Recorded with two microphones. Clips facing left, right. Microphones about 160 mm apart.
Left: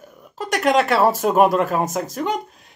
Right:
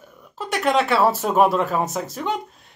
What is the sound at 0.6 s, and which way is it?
Speech, centre (ahead or behind).